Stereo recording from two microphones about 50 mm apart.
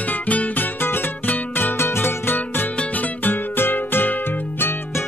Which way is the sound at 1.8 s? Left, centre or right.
Left.